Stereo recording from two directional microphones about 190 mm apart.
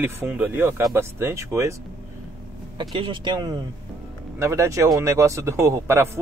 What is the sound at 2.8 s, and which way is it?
Speech, 25° right (ahead or behind).